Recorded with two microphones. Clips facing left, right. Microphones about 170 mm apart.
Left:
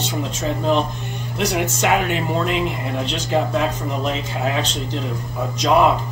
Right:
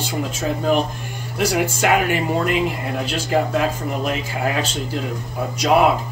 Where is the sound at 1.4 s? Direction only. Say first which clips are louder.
Right 1 dB; 5° right (ahead or behind).